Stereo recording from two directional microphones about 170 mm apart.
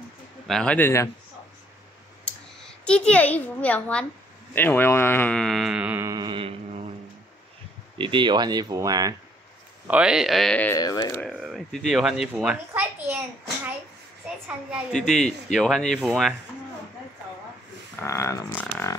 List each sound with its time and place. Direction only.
0.5 s a man's voice: 5° left (ahead or behind)
2.2 s a child's voice: 5° left (ahead or behind); by 6.1 s 10° right (ahead or behind)
6.1 s a sound: 30° right (ahead or behind)
8.0 s speech: 30° right (ahead or behind)
9.8 s speech: 5° right (ahead or behind)
10.7 s speech: 25° left (ahead or behind)
11.1 s speech: centre (ahead or behind)
14.9 s speech: centre (ahead or behind)
18.0 s a man's voice: 15° left (ahead or behind)